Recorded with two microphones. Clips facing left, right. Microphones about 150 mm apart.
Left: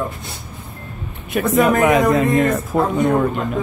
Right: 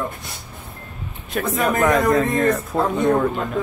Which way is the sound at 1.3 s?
10° left (ahead or behind).